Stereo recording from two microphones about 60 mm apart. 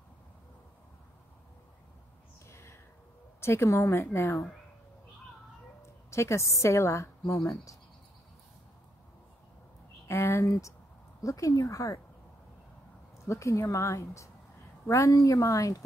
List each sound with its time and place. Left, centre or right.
2.5 s a sound: left
3.6 s a woman's voice: left
5.8 s a woman's voice: left
10.0 s a sound: left
10.4 s a woman's voice: left
13.3 s a woman's voice: left